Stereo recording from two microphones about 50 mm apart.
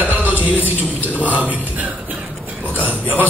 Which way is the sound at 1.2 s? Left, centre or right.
Right.